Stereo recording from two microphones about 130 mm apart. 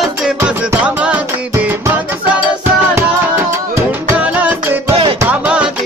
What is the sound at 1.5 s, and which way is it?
Music, 20° right (ahead or behind).